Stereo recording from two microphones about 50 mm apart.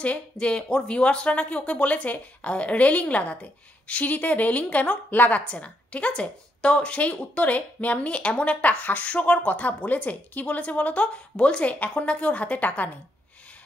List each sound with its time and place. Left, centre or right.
0.0 s a woman's voice: left
5.5 s a woman's voice: left